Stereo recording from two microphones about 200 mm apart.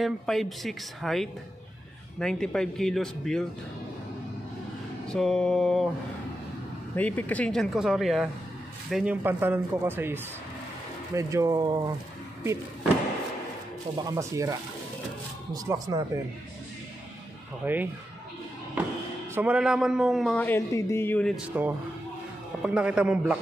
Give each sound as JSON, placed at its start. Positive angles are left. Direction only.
{"t": 0.0, "sound": "a man's voice", "side_deg": 0}
{"t": 5.1, "sound": "a man's voice", "side_deg": 5}
{"t": 7.0, "sound": "a man's voice", "side_deg": 10}
{"t": 14.0, "sound": "speech", "side_deg": -15}
{"t": 17.6, "sound": "a man's voice", "side_deg": -10}
{"t": 22.6, "sound": "a man's voice", "side_deg": -5}